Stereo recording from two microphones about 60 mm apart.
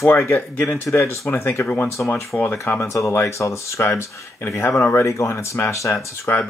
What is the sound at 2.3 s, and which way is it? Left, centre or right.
Speech, centre.